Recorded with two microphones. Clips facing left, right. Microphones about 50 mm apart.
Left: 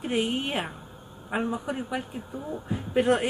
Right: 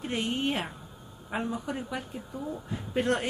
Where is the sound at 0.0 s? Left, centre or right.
Centre.